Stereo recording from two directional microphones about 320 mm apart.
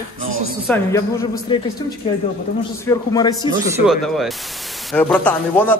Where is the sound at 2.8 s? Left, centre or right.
Centre.